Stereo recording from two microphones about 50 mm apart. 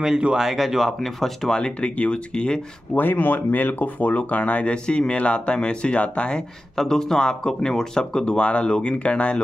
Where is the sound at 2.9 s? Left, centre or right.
Left.